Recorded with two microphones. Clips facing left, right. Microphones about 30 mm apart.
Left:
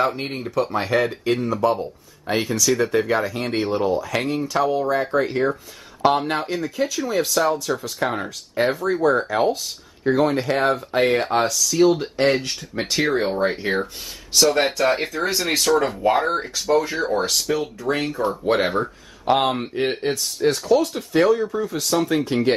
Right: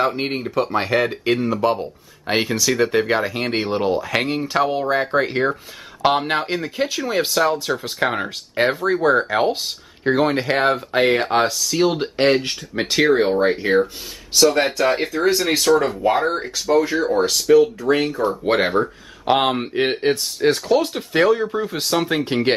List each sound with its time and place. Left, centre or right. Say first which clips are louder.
0.2 s speech: right 2 dB; right
2.2 s speech: right 1 dB; right
2.9 s speech: right 2 dB; right
3.2 s speech: right 2 dB; right
3.7 s speech: right 2 dB; right
12.4 s speech: right 3 dB; right
13.5 s speech: right 6 dB; centre; by 22.6 s right